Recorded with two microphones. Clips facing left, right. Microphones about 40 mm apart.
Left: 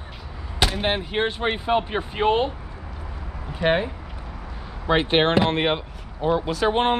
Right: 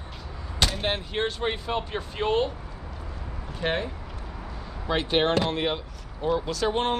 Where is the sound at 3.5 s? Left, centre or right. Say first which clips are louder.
Left 7 dB; left.